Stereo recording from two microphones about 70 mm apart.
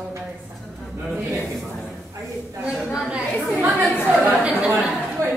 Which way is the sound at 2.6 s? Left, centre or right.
Centre.